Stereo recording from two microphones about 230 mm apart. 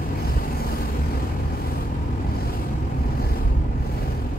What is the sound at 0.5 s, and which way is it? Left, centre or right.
Vehicle, left.